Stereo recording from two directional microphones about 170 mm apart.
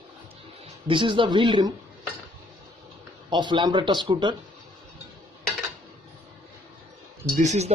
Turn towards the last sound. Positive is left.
turn(degrees=-40)  # may be behind; listen again after turning